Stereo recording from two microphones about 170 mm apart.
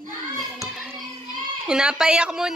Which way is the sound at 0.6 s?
Centre (ahead or behind).